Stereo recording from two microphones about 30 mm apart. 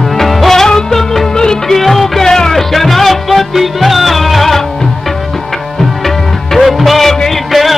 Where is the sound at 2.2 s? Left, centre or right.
Centre.